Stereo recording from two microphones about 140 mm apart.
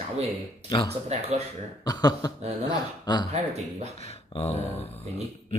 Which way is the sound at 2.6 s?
30° left (ahead or behind).